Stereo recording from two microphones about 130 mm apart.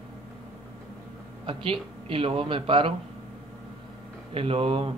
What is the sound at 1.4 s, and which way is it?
Speech, 40° right (ahead or behind).